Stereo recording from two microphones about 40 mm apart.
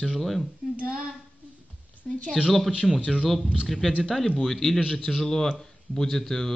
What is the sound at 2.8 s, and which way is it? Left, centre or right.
Speech, centre.